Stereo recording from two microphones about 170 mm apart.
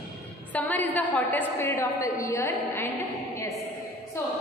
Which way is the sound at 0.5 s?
10° left (ahead or behind).